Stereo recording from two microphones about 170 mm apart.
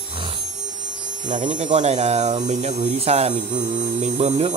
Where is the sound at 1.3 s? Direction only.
45° right (ahead or behind).